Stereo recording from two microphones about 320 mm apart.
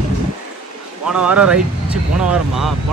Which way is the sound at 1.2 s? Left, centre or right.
Centre.